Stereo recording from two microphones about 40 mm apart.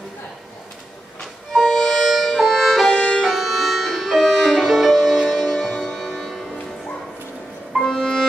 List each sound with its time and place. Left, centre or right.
1.5 s music: centre
3.3 s music: centre
7.9 s music: centre